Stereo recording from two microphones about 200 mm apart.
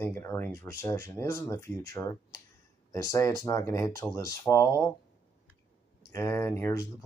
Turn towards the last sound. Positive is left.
turn(degrees=15)  # may be behind; listen again after turning